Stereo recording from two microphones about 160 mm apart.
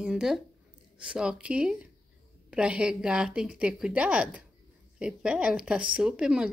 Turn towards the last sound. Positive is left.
turn(degrees=-5)  # may be behind; listen again after turning